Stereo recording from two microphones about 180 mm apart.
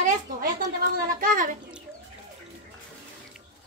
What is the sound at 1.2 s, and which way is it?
Speech, 50° right (ahead or behind).